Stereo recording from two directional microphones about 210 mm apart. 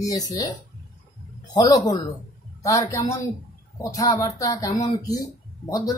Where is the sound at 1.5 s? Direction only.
20° left (ahead or behind).